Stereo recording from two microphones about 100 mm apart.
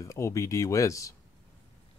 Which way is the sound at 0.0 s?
30° left (ahead or behind).